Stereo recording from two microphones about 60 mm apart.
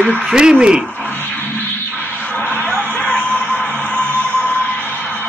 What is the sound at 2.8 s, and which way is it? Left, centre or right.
Music, left.